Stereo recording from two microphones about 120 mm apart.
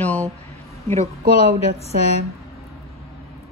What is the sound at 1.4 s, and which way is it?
Speech, 60° left (ahead or behind).